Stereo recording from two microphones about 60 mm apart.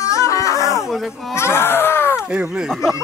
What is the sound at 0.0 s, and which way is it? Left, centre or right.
Wail, left.